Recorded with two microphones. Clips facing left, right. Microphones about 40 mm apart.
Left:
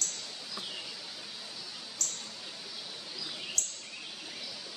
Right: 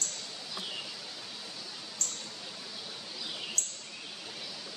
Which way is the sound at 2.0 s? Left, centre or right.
Right.